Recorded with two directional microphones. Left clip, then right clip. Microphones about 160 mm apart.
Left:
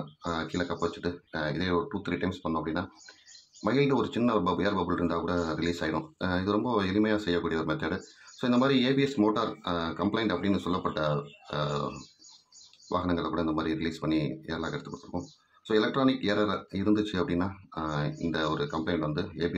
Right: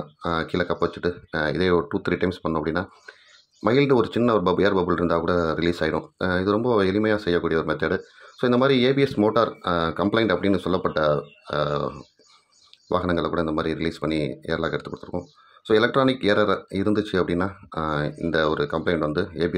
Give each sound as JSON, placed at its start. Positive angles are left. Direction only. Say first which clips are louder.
{"t": 0.2, "sound": "speech", "louder": "right 8 dB", "side_deg": -35}
{"t": 12.9, "sound": "speech", "louder": "right 7 dB", "side_deg": -35}